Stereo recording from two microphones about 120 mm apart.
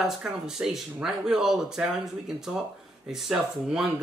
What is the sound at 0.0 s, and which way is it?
Speech, 5° right (ahead or behind).